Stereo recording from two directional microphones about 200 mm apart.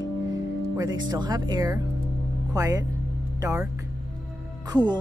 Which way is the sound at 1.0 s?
20° right (ahead or behind).